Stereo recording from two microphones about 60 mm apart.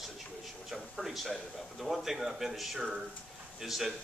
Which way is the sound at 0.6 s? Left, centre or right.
Centre.